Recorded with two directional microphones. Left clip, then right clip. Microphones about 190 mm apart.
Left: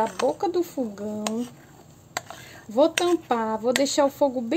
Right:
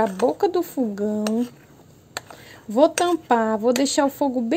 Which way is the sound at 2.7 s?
30° right (ahead or behind).